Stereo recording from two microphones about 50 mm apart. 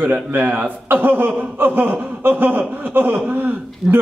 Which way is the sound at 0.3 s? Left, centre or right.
Right.